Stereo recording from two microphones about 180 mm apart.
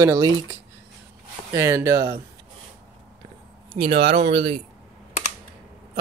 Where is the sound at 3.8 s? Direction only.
30° right (ahead or behind).